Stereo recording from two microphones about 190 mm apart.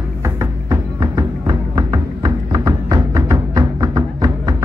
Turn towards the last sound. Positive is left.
turn(degrees=-20)  # may be behind; listen again after turning